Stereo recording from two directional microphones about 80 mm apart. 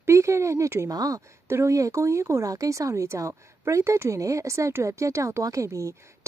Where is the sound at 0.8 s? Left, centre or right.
Right.